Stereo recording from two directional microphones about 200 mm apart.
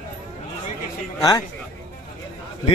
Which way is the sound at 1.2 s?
20° left (ahead or behind).